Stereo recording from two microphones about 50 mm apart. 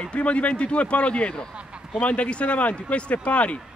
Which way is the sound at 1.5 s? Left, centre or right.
Right.